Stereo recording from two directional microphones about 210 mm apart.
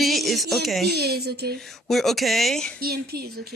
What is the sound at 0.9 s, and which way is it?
Speech, 50° right (ahead or behind).